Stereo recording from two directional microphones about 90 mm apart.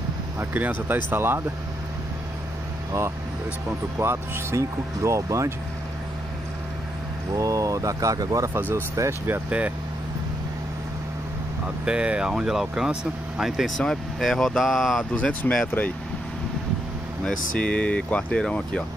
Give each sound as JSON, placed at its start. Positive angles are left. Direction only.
{"t": 0.4, "sound": "speech", "side_deg": -20}
{"t": 4.0, "sound": "speech", "side_deg": -30}
{"t": 7.3, "sound": "speech", "side_deg": -40}
{"t": 8.5, "sound": "speech", "side_deg": -25}
{"t": 11.8, "sound": "speech", "side_deg": -10}
{"t": 15.1, "sound": "speech", "side_deg": 10}
{"t": 17.2, "sound": "speech", "side_deg": 10}